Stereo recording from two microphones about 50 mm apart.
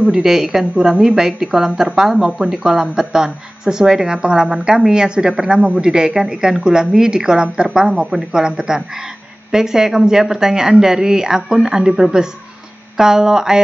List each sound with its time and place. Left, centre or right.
0.2 s a woman's voice: centre
2.1 s a woman's voice: right